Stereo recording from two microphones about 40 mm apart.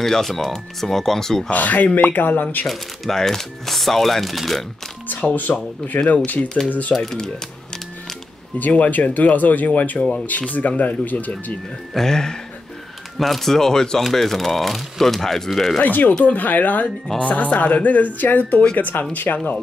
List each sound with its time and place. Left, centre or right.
0.0 s speech: centre
1.5 s speech: left
2.6 s speech: centre
5.5 s speech: left
6.9 s speech: centre
8.5 s speech: left
11.9 s speech: centre
15.8 s speech: left
17.2 s speech: left